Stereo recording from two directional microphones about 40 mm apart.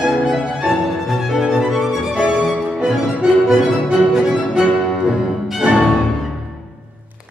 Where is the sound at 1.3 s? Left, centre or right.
Centre.